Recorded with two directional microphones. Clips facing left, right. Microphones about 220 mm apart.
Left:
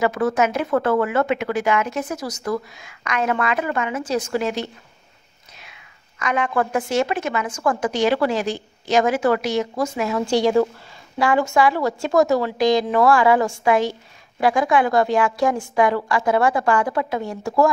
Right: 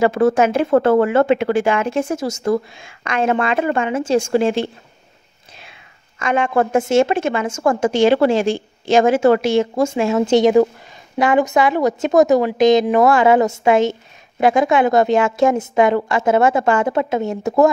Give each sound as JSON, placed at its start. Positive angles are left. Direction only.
{"t": 0.0, "sound": "a woman's voice", "side_deg": -30}